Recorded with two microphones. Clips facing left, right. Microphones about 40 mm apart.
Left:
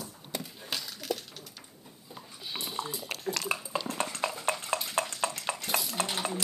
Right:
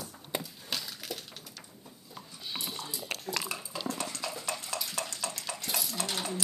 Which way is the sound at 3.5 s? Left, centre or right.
Left.